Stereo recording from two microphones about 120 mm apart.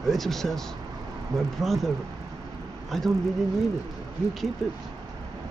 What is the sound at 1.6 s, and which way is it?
Speech, centre (ahead or behind).